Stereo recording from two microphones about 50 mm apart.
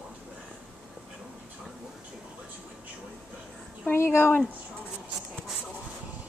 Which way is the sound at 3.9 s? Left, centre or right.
Left.